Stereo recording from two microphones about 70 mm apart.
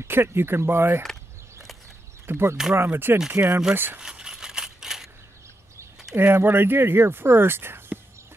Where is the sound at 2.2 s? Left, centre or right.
Right.